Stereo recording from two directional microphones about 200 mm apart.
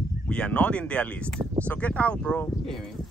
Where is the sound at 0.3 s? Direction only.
5° left (ahead or behind).